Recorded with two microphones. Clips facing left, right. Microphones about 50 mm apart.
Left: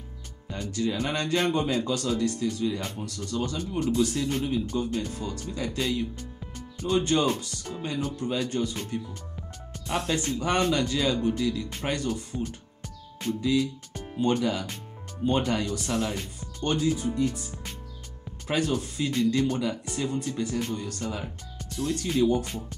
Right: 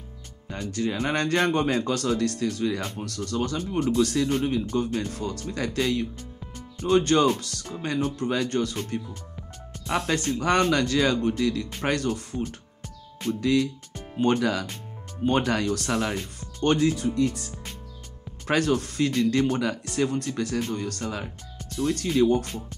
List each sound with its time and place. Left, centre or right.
0.5 s speech: right
4.4 s speech: right
9.8 s speech: right
13.4 s speech: right
14.1 s speech: right
15.2 s speech: right
16.6 s speech: right
18.5 s speech: right
19.3 s speech: right
20.7 s speech: right